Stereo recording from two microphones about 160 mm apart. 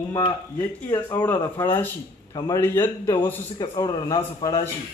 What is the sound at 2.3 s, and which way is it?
Speech, 25° left (ahead or behind).